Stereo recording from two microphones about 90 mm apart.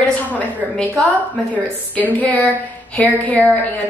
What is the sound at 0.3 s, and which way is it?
A woman's voice, 15° left (ahead or behind).